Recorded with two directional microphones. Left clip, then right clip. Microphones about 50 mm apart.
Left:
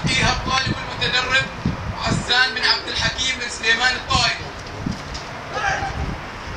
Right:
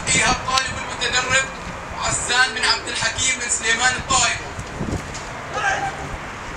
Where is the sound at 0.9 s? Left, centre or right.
Right.